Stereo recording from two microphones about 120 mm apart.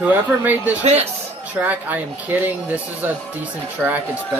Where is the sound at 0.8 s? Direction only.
65° right (ahead or behind).